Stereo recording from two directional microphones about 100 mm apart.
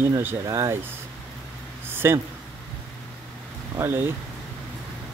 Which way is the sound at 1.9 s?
25° right (ahead or behind).